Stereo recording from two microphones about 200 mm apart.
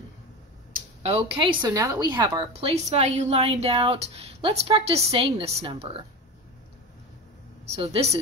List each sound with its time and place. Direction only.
1.0 s a woman's voice: 30° right (ahead or behind)
7.6 s a woman's voice: 30° right (ahead or behind)